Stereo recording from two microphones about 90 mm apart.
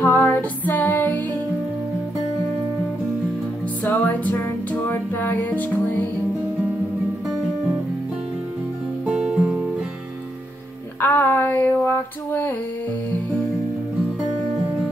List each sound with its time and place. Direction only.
0.0 s music: 25° left (ahead or behind)
3.8 s music: 20° left (ahead or behind)
9.0 s music: 10° right (ahead or behind)
11.0 s a sound: 25° left (ahead or behind)